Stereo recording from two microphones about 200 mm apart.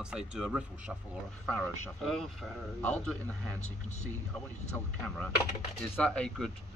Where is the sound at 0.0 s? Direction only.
5° right (ahead or behind).